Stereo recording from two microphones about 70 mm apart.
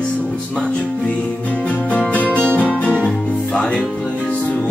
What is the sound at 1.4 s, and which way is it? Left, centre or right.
Music, centre.